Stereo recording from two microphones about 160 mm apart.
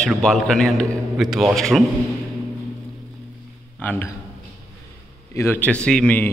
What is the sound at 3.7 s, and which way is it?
Speech, 10° left (ahead or behind).